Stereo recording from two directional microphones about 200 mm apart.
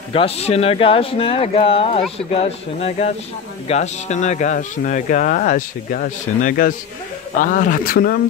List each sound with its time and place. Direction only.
0.1 s speech: 30° left (ahead or behind); by 8.2 s 45° left (ahead or behind)